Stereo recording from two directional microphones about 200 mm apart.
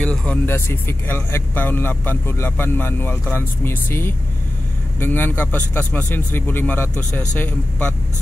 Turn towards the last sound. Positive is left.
turn(degrees=10)  # may be behind; listen again after turning